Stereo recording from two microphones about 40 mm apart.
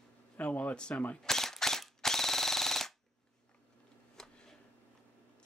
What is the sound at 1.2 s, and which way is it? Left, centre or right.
Machine gun, centre.